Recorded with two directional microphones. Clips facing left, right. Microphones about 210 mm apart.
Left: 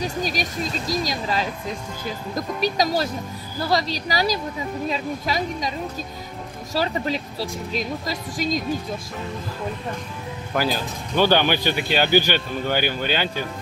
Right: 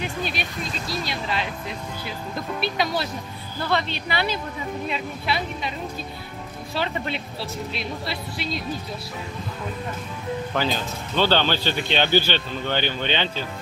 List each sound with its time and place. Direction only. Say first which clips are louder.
0.0 s a woman's voice: left 3 dB; 40° left (ahead or behind)
6.7 s a woman's voice: left 4 dB; 40° left (ahead or behind)
10.5 s speech: left 4 dB; 10° left (ahead or behind)